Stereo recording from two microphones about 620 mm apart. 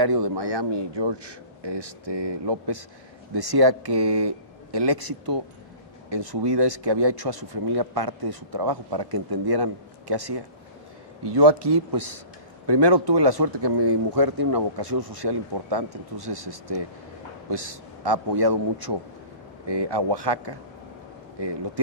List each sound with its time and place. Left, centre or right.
0.0 s speech: right